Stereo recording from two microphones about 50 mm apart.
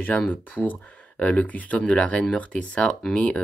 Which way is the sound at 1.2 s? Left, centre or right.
Left.